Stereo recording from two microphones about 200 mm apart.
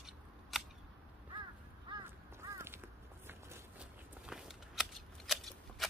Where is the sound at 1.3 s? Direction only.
20° right (ahead or behind).